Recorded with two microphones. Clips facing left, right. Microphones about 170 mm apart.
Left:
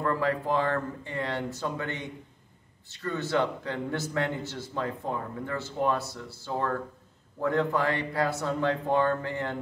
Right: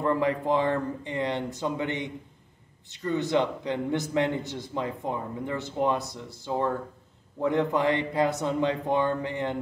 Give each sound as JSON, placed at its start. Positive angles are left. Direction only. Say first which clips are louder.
{"t": 0.0, "sound": "a man's voice", "louder": "right 2 dB", "side_deg": -20}